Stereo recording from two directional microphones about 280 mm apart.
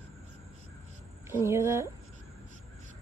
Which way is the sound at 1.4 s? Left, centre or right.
Centre.